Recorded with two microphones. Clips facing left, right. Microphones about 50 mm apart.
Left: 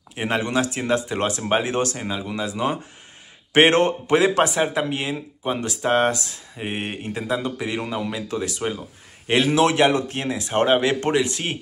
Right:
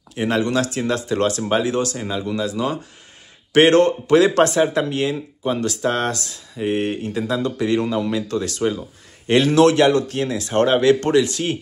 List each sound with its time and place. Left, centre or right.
0.1 s speech: centre
2.0 s speech: centre
4.4 s speech: centre